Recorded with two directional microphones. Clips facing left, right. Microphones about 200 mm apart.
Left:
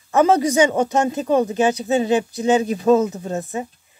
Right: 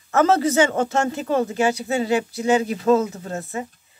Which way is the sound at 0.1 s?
15° left (ahead or behind).